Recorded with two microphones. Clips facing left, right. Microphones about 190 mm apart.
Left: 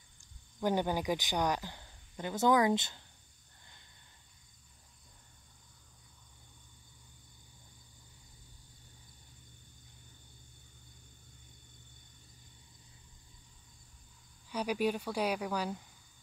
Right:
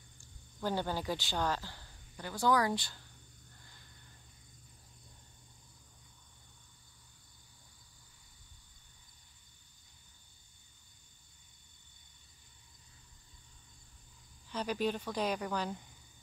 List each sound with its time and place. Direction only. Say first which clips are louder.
0.6 s speech: left 4 dB; 15° left (ahead or behind)
14.5 s speech: left 2 dB; 10° left (ahead or behind)